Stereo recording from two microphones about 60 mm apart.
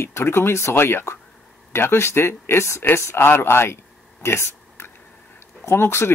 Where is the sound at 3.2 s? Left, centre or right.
Left.